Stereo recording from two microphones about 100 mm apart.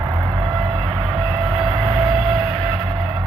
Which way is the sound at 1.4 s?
90° right.